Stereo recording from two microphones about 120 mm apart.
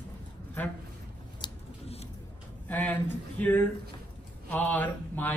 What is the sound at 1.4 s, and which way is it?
Scissors, 35° left (ahead or behind).